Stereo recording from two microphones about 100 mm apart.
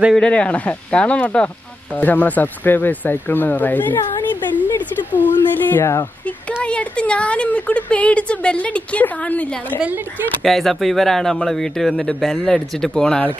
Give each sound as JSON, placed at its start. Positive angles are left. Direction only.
{"t": 0.1, "sound": "speech", "side_deg": 10}
{"t": 6.6, "sound": "speech", "side_deg": 10}
{"t": 10.4, "sound": "speech", "side_deg": 0}